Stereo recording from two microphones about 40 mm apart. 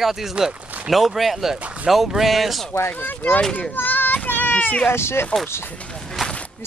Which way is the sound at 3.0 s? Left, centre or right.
Left.